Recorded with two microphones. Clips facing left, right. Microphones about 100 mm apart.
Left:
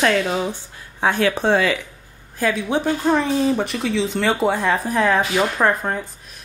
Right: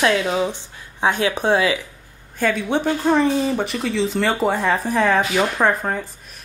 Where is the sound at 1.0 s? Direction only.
20° right (ahead or behind).